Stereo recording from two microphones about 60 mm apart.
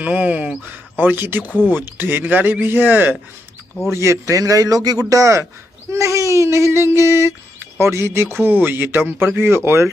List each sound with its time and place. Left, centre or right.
0.0 s speech: right
3.9 s a man's voice: right